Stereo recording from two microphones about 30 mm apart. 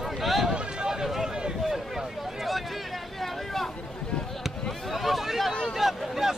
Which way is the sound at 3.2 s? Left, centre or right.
Centre.